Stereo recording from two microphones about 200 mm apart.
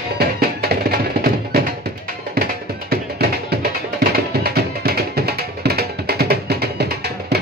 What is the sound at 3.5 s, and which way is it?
Music, 50° right (ahead or behind).